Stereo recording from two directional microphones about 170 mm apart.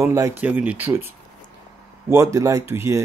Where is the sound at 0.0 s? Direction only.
15° right (ahead or behind).